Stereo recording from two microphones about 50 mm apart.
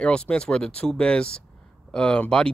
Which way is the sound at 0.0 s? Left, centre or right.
Centre.